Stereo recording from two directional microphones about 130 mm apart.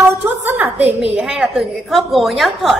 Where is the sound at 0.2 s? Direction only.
15° right (ahead or behind).